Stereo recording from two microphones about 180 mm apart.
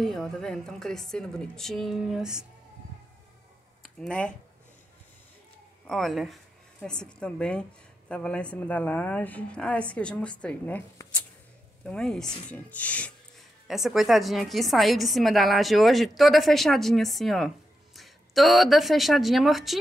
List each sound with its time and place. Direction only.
0.0 s speech: centre (ahead or behind)
3.8 s speech: 5° left (ahead or behind)
5.9 s a woman's voice: centre (ahead or behind)